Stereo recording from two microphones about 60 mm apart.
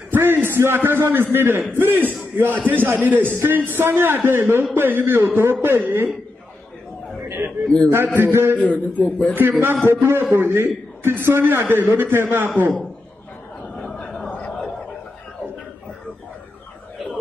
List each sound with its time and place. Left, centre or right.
0.1 s a man's voice: right
7.2 s a sound: right
7.9 s a man's voice: right
8.3 s a man's voice: right
8.5 s a man's voice: left
9.3 s a man's voice: right
9.8 s a man's voice: right
12.4 s a man's voice: right
14.3 s a sound: centre